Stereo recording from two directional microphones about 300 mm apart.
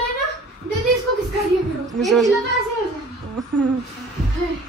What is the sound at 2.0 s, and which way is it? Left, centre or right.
Speech, centre.